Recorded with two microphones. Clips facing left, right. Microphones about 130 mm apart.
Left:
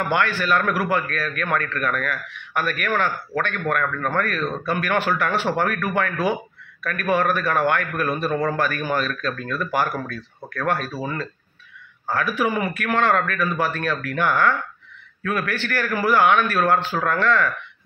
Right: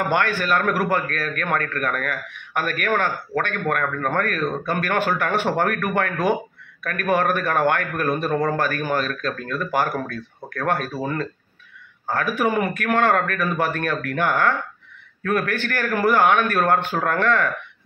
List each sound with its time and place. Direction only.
0.1 s a man's voice: 50° right (ahead or behind)
12.1 s a man's voice: 50° right (ahead or behind)